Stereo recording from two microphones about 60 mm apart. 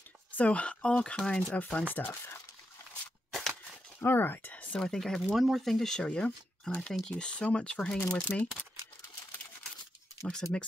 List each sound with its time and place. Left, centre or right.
0.4 s speech: left
2.0 s speech: left
4.0 s speech: left
4.7 s speech: centre
8.2 s speech: left
10.3 s speech: centre